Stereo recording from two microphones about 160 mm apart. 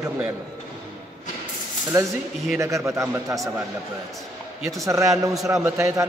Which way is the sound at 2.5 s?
20° right (ahead or behind).